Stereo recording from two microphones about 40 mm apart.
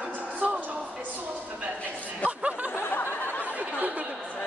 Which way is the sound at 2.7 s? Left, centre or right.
Left.